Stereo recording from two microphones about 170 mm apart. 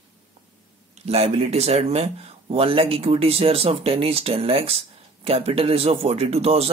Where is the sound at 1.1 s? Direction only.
40° right (ahead or behind).